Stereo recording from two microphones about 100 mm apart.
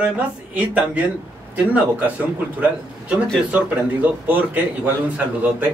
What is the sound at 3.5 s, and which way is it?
Speech, 15° right (ahead or behind).